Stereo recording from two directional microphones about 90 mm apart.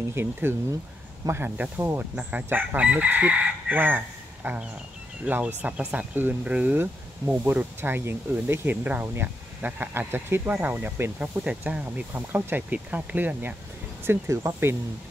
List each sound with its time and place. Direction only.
0.1 s speech: 25° right (ahead or behind)
1.6 s chicken: 25° right (ahead or behind)
5.2 s speech: 15° right (ahead or behind)
14.0 s speech: 30° right (ahead or behind)